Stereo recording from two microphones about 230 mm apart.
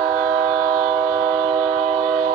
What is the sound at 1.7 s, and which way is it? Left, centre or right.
Train, right.